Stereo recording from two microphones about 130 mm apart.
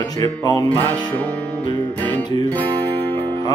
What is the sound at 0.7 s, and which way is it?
Music, 15° left (ahead or behind).